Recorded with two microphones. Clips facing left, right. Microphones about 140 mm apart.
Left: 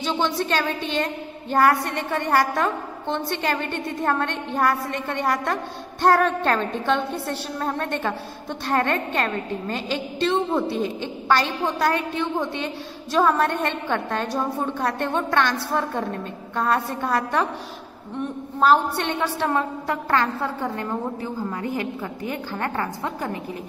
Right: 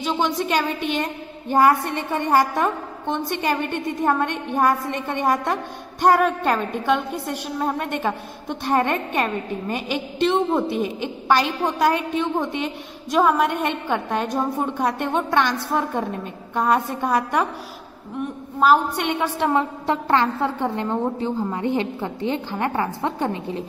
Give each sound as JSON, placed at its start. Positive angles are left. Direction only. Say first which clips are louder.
{"t": 0.0, "sound": "a woman's voice", "louder": "right 1 dB", "side_deg": -10}
{"t": 18.6, "sound": "a woman's voice", "louder": "right 1 dB", "side_deg": -10}